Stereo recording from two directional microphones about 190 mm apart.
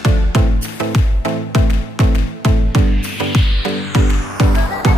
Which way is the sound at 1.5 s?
Centre (ahead or behind).